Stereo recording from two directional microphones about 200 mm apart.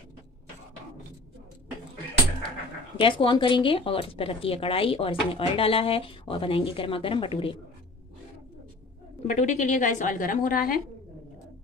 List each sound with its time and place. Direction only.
3.0 s speech: 25° left (ahead or behind)
9.3 s a woman's voice: 35° left (ahead or behind)